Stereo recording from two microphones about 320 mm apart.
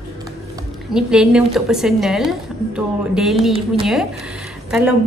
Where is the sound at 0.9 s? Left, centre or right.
Centre.